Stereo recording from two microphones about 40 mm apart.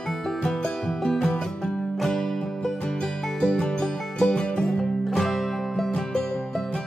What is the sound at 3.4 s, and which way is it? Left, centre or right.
Music, left.